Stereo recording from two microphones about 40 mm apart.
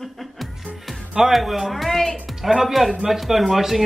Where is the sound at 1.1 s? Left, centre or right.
Centre.